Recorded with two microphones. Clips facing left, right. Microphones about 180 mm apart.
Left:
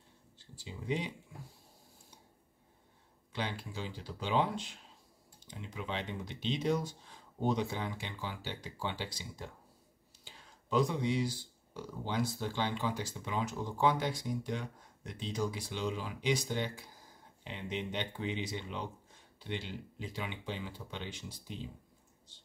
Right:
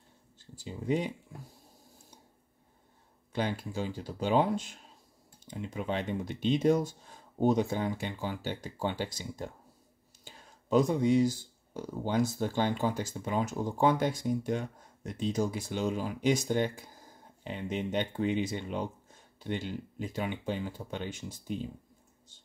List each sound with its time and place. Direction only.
0.6 s speech: 45° right (ahead or behind)
3.3 s speech: 45° right (ahead or behind)